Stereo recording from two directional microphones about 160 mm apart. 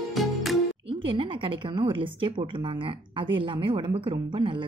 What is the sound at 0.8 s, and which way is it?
A woman's voice, 35° right (ahead or behind).